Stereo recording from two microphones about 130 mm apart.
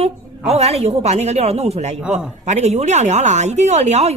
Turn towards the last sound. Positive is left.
turn(degrees=-55)  # may be behind; listen again after turning